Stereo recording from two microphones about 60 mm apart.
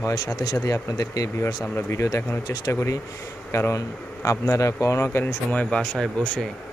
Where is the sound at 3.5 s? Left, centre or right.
Left.